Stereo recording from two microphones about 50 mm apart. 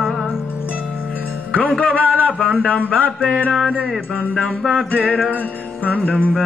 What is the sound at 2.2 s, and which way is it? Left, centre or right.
Music, right.